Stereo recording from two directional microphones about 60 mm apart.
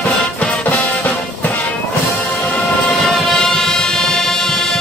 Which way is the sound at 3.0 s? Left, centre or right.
Centre.